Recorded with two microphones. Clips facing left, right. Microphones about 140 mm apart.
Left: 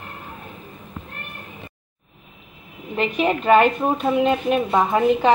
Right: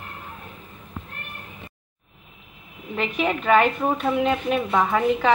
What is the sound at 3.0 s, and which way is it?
A woman's voice, 25° left (ahead or behind).